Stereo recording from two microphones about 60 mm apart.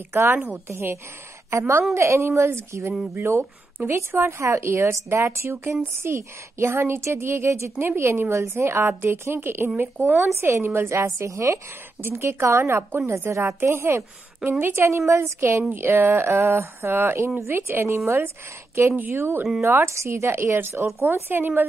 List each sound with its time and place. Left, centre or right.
0.1 s a woman's voice: right
10.2 s a woman's voice: right
12.0 s a woman's voice: right
18.9 s speech: right
19.6 s a woman's voice: right